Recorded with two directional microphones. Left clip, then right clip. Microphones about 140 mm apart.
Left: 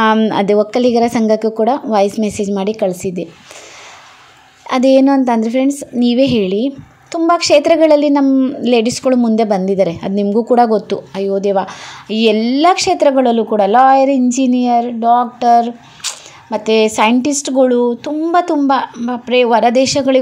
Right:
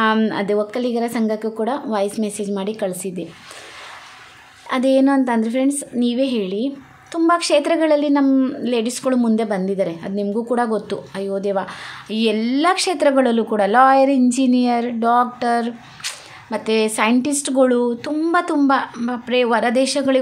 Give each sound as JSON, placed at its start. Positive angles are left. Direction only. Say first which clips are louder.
{"t": 0.3, "sound": "a woman's voice", "louder": "left 7 dB", "side_deg": 40}
{"t": 4.6, "sound": "a woman's voice", "louder": "left 6 dB", "side_deg": 30}
{"t": 8.6, "sound": "a woman's voice", "louder": "left 7 dB", "side_deg": 30}
{"t": 15.3, "sound": "a woman's voice", "louder": "left 9 dB", "side_deg": 15}